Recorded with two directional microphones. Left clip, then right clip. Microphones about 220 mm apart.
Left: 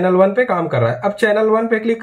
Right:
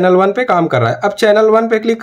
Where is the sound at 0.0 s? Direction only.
50° right (ahead or behind).